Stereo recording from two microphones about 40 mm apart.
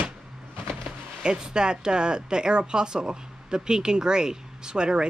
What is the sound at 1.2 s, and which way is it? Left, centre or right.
Speech, right.